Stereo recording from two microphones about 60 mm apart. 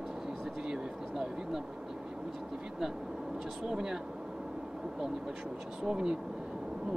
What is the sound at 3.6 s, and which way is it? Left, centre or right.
Speech, centre.